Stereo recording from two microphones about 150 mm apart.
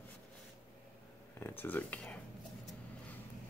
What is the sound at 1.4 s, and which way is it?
Speech, 10° left (ahead or behind).